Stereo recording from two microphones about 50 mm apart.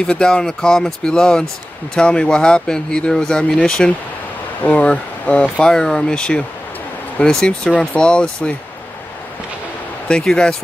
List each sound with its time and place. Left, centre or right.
0.0 s speech: centre
4.6 s speech: left
10.0 s speech: centre